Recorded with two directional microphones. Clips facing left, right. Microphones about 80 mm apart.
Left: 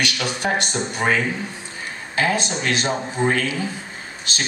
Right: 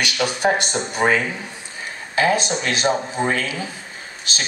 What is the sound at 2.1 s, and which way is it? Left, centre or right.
Speech, right.